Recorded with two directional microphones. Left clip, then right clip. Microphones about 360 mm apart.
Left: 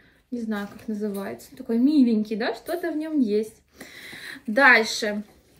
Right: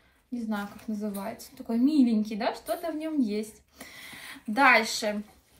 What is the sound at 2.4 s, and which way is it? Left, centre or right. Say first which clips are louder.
Speech: left 3 dB; right.